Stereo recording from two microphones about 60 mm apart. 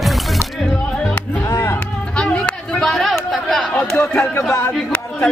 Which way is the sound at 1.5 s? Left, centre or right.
Left.